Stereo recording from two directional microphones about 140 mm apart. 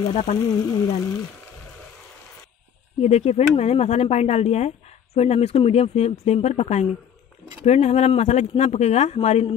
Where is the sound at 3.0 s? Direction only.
50° left (ahead or behind).